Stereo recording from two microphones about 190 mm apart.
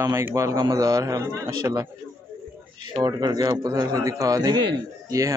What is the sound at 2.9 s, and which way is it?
Speech, 20° right (ahead or behind).